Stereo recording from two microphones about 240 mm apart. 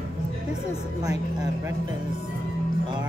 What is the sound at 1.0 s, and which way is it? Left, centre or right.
Speech, centre.